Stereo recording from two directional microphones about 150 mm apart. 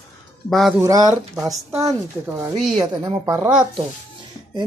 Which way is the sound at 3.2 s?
20° right (ahead or behind).